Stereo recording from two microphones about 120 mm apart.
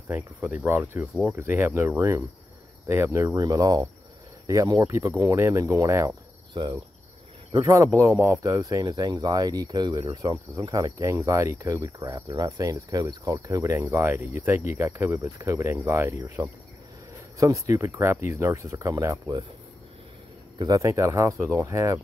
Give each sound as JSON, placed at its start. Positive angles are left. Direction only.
{"t": 0.5, "sound": "speech", "side_deg": -15}
{"t": 20.5, "sound": "speech", "side_deg": -30}